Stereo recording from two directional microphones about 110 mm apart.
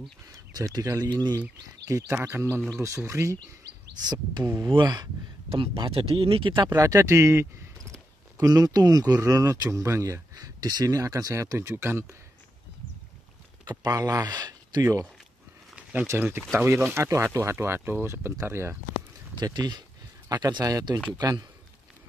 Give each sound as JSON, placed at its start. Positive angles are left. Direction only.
{"t": 0.3, "sound": "speech", "side_deg": -35}
{"t": 1.9, "sound": "speech", "side_deg": -30}
{"t": 2.1, "sound": "speech", "side_deg": -15}
{"t": 2.7, "sound": "speech", "side_deg": -25}
{"t": 4.0, "sound": "speech", "side_deg": -40}
{"t": 5.5, "sound": "speech", "side_deg": -55}
{"t": 6.7, "sound": "speech", "side_deg": -30}
{"t": 13.7, "sound": "speech", "side_deg": -35}
{"t": 15.7, "sound": "a sound", "side_deg": -15}
{"t": 16.1, "sound": "speech", "side_deg": -20}
{"t": 19.3, "sound": "speech", "side_deg": -40}